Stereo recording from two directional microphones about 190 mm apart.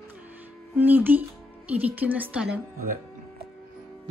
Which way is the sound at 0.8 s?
10° right (ahead or behind).